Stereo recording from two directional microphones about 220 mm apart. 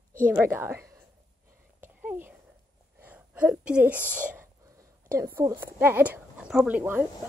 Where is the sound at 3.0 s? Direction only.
5° right (ahead or behind).